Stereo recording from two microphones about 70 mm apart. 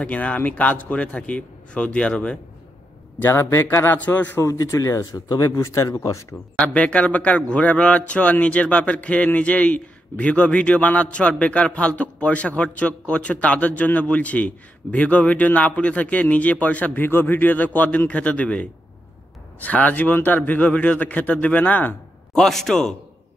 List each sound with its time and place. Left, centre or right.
0.0 s a man's voice: left
3.2 s a man's voice: left
4.4 s speech: left
6.6 s a man's voice: centre
22.3 s a man's voice: centre